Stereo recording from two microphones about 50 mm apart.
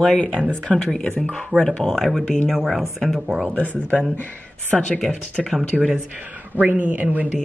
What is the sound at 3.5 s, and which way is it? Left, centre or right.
Speech, left.